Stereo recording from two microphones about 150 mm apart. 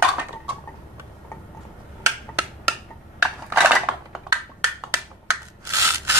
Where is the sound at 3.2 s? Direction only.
5° right (ahead or behind).